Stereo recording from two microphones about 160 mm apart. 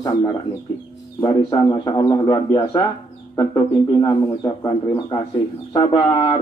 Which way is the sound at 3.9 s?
30° left (ahead or behind).